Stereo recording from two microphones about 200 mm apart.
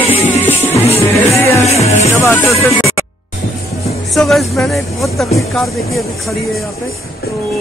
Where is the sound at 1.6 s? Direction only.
30° left (ahead or behind).